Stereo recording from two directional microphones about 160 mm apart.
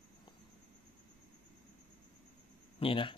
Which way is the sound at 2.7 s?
35° left (ahead or behind).